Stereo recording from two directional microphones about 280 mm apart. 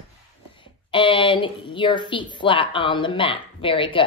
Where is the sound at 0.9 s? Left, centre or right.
Centre.